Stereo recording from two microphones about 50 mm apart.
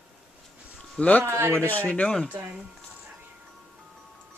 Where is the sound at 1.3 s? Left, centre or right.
Right.